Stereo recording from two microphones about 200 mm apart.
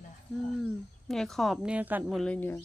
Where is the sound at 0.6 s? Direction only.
Centre (ahead or behind).